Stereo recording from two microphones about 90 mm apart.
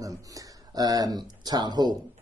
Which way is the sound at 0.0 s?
40° right (ahead or behind).